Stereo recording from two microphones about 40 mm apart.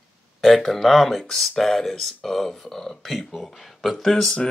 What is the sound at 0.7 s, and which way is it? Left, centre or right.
Speech, centre.